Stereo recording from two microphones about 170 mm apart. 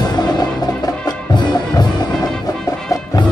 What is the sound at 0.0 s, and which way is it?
Music, 25° left (ahead or behind).